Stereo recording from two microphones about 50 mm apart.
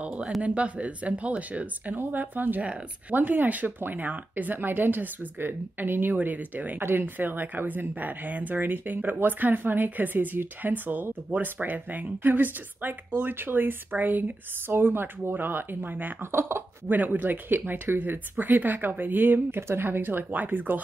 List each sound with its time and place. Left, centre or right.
0.0 s a sound: right
0.4 s speech: right
2.0 s a woman's voice: right
6.8 s a woman's voice: right
16.8 s a woman's voice: right